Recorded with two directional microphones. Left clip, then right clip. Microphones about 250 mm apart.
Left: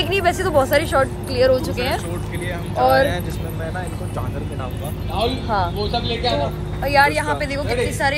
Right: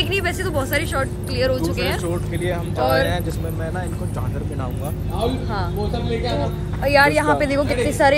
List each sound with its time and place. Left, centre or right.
0.0 s speech: centre
6.8 s speech: centre